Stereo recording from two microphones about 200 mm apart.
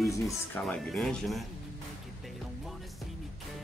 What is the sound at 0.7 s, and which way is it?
Speech, 5° left (ahead or behind).